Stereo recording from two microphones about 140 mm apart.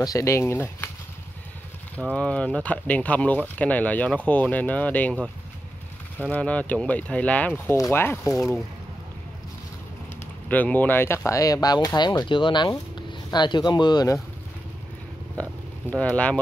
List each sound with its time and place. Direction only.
0.0 s speech: 20° left (ahead or behind)
2.0 s speech: 10° left (ahead or behind)
6.2 s speech: 10° left (ahead or behind)
10.5 s speech: 10° left (ahead or behind)
15.9 s speech: 10° left (ahead or behind)